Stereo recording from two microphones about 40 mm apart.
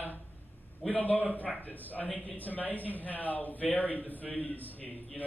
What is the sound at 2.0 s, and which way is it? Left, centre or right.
A man's voice, left.